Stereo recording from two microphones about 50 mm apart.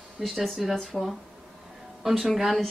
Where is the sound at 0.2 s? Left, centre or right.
Centre.